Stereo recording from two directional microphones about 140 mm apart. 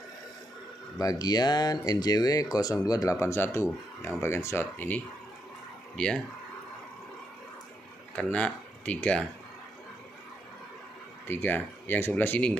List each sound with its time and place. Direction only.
0.9 s speech: 25° left (ahead or behind); by 6.2 s 5° left (ahead or behind)
8.2 s speech: 10° left (ahead or behind)
11.2 s speech: 15° left (ahead or behind)